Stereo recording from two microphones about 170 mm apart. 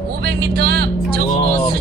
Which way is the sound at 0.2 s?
65° right (ahead or behind).